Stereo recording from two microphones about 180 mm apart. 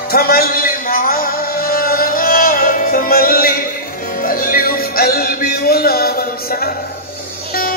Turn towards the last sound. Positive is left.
turn(degrees=55)  # may be behind; listen again after turning